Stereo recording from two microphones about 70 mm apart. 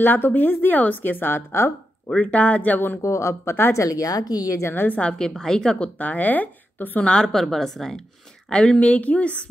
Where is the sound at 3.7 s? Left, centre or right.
Left.